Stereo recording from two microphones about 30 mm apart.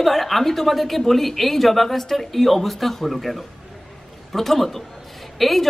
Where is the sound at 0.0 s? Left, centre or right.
Centre.